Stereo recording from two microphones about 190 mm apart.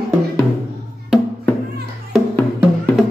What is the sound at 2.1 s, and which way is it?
Music, 10° left (ahead or behind).